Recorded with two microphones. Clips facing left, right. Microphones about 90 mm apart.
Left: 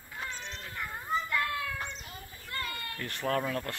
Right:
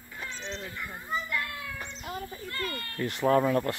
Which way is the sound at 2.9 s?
15° right (ahead or behind).